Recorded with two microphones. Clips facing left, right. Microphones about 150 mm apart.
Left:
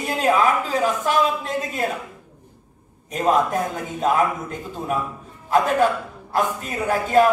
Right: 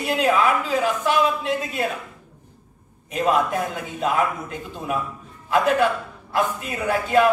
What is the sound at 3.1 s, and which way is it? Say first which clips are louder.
A woman's voice: left 1 dB; 40° left (ahead or behind).